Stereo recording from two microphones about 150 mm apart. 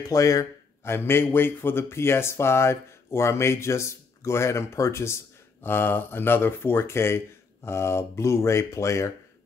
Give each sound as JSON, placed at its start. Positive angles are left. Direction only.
{"t": 0.0, "sound": "a man's voice", "side_deg": 20}